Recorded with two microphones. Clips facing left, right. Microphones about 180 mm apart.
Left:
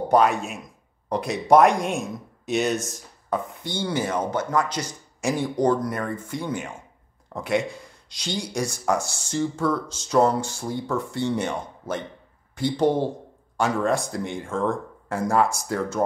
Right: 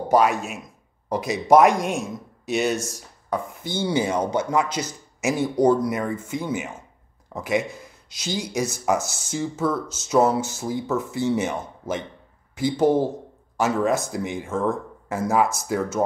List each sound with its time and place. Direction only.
0.1 s speech: centre (ahead or behind)